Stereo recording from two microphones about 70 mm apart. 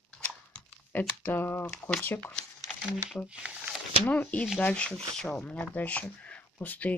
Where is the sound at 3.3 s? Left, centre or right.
Centre.